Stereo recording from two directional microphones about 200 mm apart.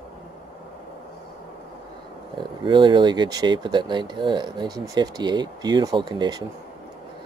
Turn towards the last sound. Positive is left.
turn(degrees=-20)  # may be behind; listen again after turning